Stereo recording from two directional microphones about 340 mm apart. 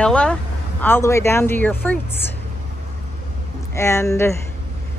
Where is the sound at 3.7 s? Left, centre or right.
Centre.